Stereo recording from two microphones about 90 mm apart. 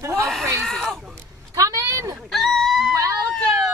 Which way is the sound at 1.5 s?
35° right (ahead or behind).